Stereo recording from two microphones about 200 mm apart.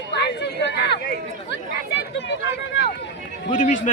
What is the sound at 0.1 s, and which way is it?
Chatter, 60° left (ahead or behind).